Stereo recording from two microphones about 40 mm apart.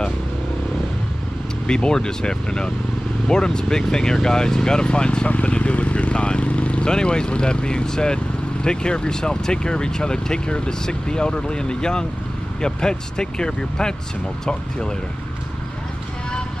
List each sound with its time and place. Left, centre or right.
1.7 s speech: left
5.3 s vehicle: left
6.9 s speech: left